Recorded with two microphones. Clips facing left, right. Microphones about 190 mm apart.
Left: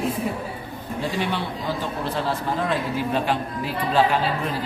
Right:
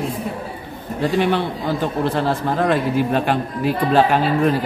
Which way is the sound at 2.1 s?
60° right (ahead or behind).